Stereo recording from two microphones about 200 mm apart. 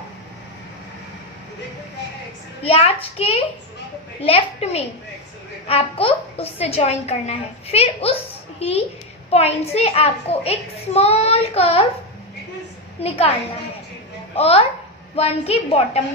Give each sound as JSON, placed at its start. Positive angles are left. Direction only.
{"t": 2.6, "sound": "a child's voice", "side_deg": 30}
{"t": 13.0, "sound": "a child's voice", "side_deg": 30}
{"t": 14.3, "sound": "a woman's voice", "side_deg": 30}